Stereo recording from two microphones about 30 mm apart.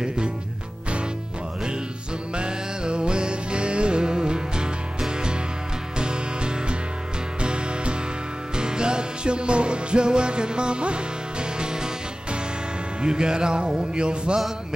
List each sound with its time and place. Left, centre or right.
2.3 s music: right
5.9 s music: right